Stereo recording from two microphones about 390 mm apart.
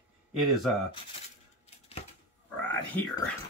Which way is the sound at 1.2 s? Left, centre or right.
Centre.